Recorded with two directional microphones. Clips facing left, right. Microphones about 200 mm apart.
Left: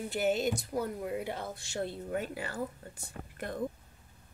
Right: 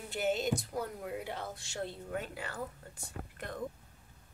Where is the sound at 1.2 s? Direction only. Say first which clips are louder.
Left 3 dB; 15° left (ahead or behind).